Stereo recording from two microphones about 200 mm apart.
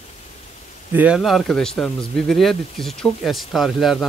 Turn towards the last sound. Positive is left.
turn(degrees=0)  # may be behind; listen again after turning